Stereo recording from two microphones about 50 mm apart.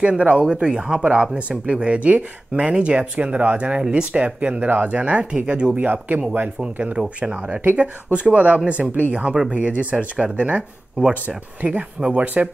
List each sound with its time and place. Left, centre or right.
0.0 s speech: right
5.9 s speech: right
6.6 s speech: centre